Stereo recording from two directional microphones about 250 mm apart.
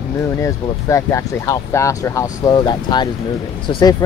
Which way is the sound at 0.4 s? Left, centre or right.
Centre.